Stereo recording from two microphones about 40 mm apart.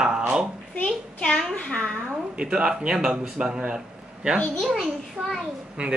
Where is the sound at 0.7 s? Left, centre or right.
Left.